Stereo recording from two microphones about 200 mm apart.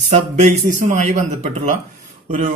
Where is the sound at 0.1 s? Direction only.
35° right (ahead or behind).